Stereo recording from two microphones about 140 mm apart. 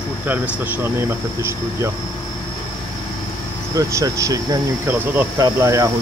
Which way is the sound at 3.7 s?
25° right (ahead or behind).